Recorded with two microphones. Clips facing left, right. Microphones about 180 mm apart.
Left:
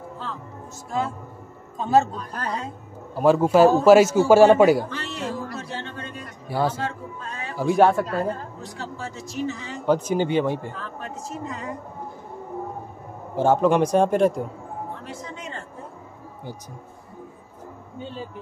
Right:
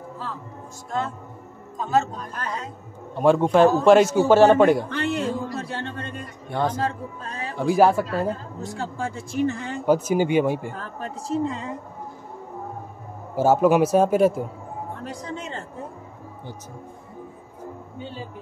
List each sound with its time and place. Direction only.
0.9 s a man's voice: 5° left (ahead or behind)
1.8 s a man's voice: 30° left (ahead or behind)
3.2 s a man's voice: 5° left (ahead or behind)
4.8 s speech: 55° right (ahead or behind)
5.6 s music: 60° right (ahead or behind)
6.8 s speech: 35° right (ahead or behind)
7.5 s speech: centre (ahead or behind)
8.6 s speech: 50° right (ahead or behind)
9.8 s speech: 10° right (ahead or behind)
10.7 s speech: 40° right (ahead or behind)
13.4 s speech: 5° right (ahead or behind)